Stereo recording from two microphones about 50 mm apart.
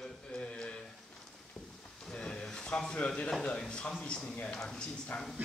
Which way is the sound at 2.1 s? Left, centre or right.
Centre.